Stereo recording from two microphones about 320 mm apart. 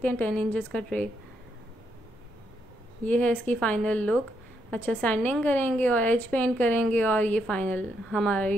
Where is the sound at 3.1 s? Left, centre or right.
Centre.